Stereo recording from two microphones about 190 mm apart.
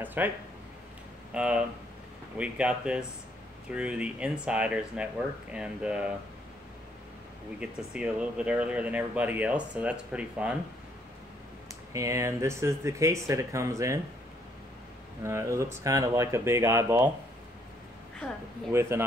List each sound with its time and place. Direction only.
0.0 s speech: 10° right (ahead or behind)
1.3 s speech: 5° right (ahead or behind)
7.6 s speech: 5° right (ahead or behind)
11.9 s speech: 15° right (ahead or behind)
15.2 s speech: 15° right (ahead or behind)
18.7 s speech: 15° right (ahead or behind)